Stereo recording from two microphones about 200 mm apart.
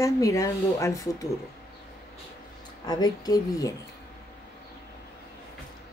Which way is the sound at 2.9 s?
20° left (ahead or behind).